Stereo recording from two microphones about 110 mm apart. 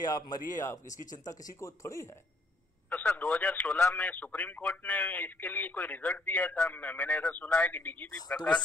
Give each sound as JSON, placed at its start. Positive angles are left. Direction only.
{"t": 0.0, "sound": "speech", "side_deg": 35}
{"t": 2.9, "sound": "speech", "side_deg": 15}